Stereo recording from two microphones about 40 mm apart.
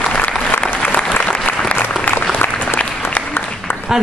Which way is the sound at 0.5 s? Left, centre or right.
Left.